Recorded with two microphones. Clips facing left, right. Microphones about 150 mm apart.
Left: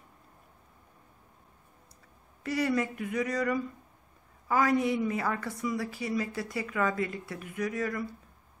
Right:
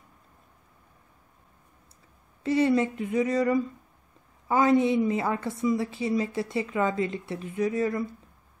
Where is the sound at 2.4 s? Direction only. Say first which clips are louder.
Right 6 dB; 25° right (ahead or behind).